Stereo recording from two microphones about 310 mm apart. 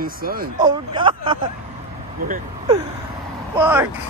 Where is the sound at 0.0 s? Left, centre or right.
Right.